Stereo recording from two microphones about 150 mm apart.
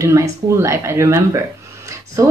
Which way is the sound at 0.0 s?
20° right (ahead or behind).